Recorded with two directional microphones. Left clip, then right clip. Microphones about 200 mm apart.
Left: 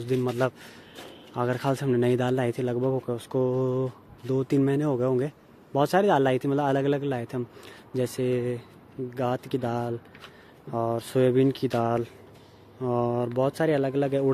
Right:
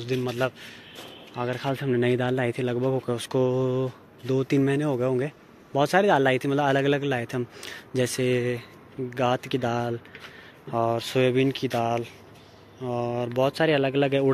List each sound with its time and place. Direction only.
0.0 s speech: 30° left (ahead or behind)
13.4 s speech: 15° left (ahead or behind); by 14.3 s centre (ahead or behind)